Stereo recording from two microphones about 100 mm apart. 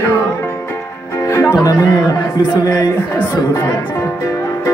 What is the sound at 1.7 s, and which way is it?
Speech, 35° left (ahead or behind).